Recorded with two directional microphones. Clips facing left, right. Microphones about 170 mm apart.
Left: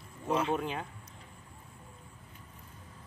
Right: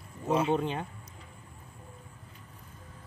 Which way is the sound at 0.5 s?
30° right (ahead or behind).